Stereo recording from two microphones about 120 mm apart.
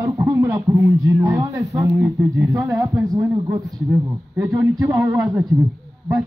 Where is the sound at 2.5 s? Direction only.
25° right (ahead or behind).